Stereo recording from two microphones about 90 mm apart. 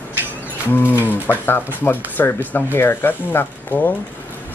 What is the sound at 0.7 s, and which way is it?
Speech, 25° left (ahead or behind).